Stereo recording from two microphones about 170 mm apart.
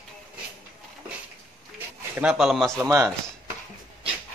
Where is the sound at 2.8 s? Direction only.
20° right (ahead or behind).